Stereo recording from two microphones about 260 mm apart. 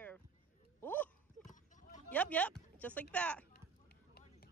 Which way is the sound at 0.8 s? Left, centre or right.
Centre.